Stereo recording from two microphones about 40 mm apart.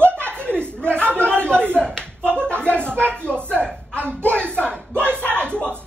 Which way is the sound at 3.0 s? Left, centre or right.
Left.